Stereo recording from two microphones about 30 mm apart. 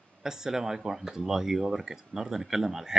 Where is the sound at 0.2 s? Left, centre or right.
Centre.